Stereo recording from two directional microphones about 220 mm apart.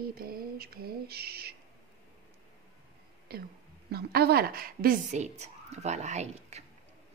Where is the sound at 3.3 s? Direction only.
45° right (ahead or behind).